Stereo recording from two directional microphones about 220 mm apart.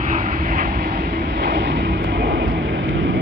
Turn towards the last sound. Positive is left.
turn(degrees=-55)  # may be behind; listen again after turning